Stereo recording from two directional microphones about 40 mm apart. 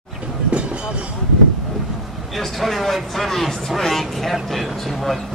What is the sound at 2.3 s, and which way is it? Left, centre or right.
Speech, centre.